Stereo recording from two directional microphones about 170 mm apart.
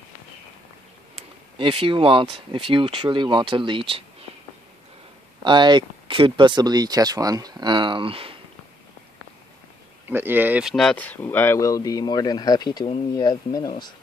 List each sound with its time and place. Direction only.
1.6 s speech: 30° right (ahead or behind)
5.4 s speech: 25° right (ahead or behind)
10.0 s speech: 10° right (ahead or behind); by 13.9 s 25° left (ahead or behind)